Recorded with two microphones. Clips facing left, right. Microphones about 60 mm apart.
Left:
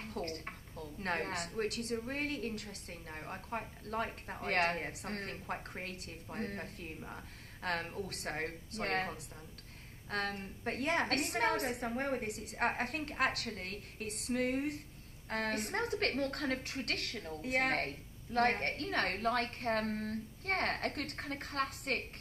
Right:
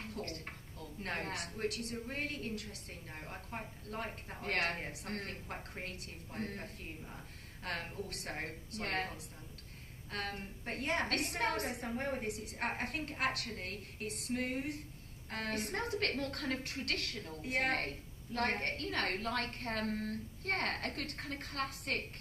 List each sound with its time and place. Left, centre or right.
0.0 s a sound: left
0.7 s a woman's voice: left
3.1 s a woman's voice: left
8.4 s a woman's voice: left
10.6 s a woman's voice: left
11.9 s a woman's voice: left
12.3 s a woman's voice: left
12.5 s a woman's voice: left
13.7 s a woman's voice: right
14.3 s a woman's voice: left
16.0 s a woman's voice: left
16.7 s a woman's voice: left
17.7 s a woman's voice: left